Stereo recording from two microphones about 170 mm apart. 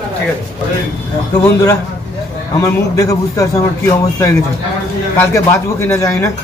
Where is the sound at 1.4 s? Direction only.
20° left (ahead or behind).